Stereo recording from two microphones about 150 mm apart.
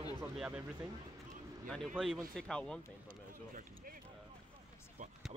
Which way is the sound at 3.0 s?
65° right (ahead or behind).